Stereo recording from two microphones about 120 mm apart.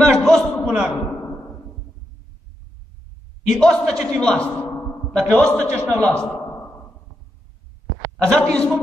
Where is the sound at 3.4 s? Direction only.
5° left (ahead or behind).